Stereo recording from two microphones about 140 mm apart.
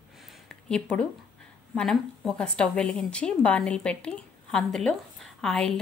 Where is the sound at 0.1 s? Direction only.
Centre (ahead or behind).